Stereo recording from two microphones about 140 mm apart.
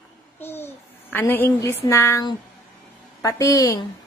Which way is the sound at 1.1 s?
15° left (ahead or behind).